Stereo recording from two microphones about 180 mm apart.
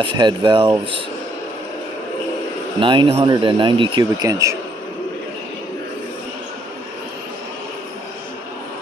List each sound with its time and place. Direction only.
0.0 s speech: 25° right (ahead or behind)
2.8 s speech: 30° right (ahead or behind)